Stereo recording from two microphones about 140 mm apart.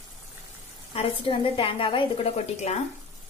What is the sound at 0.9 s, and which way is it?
A woman's voice, 40° left (ahead or behind).